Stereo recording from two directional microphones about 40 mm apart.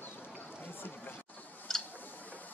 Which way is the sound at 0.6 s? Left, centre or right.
Left.